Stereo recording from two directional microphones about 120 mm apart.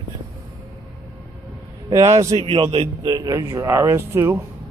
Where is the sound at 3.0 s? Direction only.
30° right (ahead or behind).